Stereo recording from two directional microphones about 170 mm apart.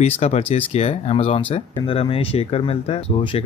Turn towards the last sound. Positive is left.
turn(degrees=35)  # may be behind; listen again after turning